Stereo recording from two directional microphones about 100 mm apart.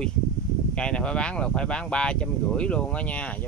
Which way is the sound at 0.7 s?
10° left (ahead or behind).